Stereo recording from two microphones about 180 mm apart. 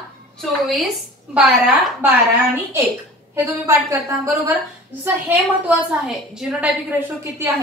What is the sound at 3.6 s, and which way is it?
Speech, 15° right (ahead or behind).